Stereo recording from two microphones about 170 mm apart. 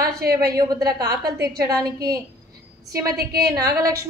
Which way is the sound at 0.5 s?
20° right (ahead or behind).